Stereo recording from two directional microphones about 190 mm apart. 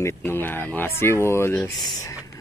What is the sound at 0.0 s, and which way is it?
Speech, 10° left (ahead or behind).